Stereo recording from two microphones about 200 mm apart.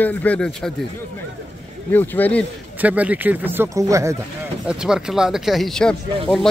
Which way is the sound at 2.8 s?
5° right (ahead or behind).